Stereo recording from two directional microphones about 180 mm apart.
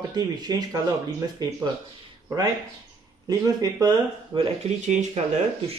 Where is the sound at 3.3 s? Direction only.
20° right (ahead or behind).